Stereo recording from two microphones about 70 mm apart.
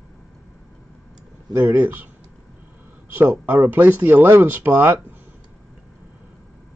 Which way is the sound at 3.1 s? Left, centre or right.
Right.